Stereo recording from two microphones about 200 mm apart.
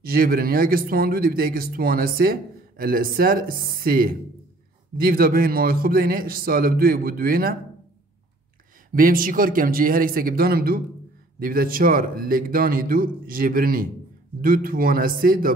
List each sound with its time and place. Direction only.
0.0 s a man's voice: 45° right (ahead or behind)
8.9 s a man's voice: 45° right (ahead or behind)